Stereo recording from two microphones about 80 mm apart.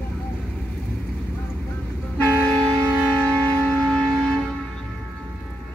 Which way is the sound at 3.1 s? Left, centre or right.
Centre.